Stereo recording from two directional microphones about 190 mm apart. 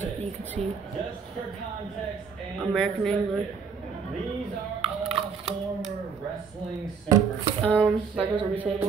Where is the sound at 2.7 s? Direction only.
Centre (ahead or behind).